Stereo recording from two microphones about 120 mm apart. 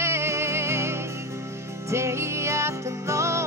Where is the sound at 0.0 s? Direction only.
25° right (ahead or behind).